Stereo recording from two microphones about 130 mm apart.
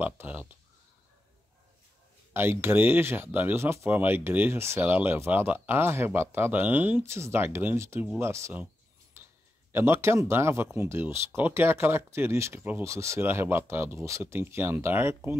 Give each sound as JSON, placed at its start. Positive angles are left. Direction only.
{"t": 0.0, "sound": "speech", "side_deg": -10}
{"t": 2.3, "sound": "speech", "side_deg": -15}
{"t": 9.1, "sound": "a sound", "side_deg": -20}
{"t": 9.7, "sound": "speech", "side_deg": -20}